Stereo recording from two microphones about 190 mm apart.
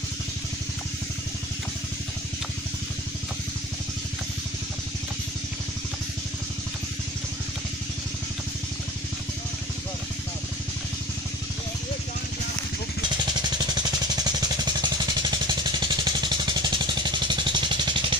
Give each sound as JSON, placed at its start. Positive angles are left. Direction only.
{"t": 13.2, "sound": "vehicle", "side_deg": -20}